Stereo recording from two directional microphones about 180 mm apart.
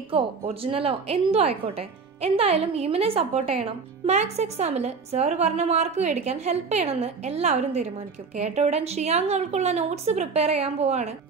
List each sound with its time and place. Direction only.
0.1 s a woman's voice: 30° right (ahead or behind)